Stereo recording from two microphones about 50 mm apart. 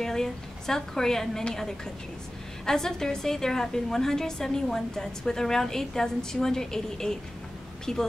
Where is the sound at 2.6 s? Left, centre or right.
Centre.